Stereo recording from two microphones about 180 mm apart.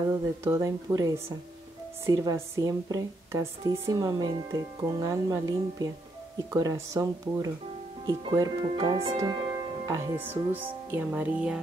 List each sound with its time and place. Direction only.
0.1 s speech: 15° right (ahead or behind); by 9.2 s 30° right (ahead or behind)
9.2 s speech: 20° right (ahead or behind)